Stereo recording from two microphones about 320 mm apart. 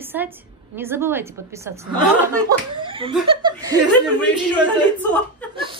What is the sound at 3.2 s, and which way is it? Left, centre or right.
Chuckle, centre.